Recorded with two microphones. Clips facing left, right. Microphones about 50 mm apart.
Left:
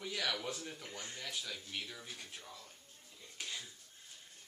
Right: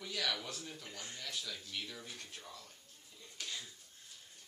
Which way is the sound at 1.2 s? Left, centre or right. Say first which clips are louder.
Even; left.